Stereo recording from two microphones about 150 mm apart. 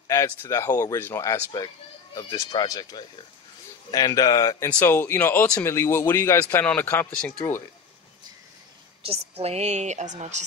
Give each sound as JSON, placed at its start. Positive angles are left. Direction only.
{"t": 0.1, "sound": "speech", "side_deg": 20}
{"t": 6.4, "sound": "speech", "side_deg": 10}
{"t": 9.0, "sound": "a woman's voice", "side_deg": -40}